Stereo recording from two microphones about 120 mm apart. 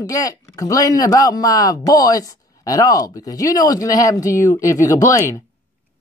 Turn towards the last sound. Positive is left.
turn(degrees=25)  # may be behind; listen again after turning